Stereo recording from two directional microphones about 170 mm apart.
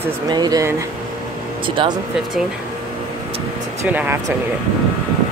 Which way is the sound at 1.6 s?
30° right (ahead or behind).